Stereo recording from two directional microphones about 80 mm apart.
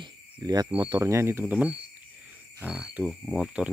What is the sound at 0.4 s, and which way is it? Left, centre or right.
Speech, right.